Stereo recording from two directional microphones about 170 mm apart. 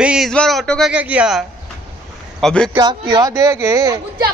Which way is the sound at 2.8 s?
25° right (ahead or behind).